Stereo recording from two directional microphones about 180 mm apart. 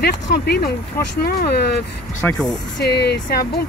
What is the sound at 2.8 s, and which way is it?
Speech, 65° left (ahead or behind).